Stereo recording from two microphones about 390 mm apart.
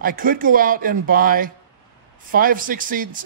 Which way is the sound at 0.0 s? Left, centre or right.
Right.